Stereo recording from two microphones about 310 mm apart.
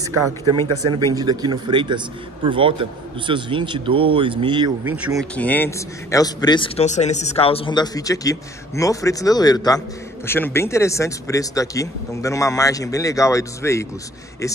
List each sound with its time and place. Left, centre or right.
0.7 s speech: right
1.1 s a man's voice: centre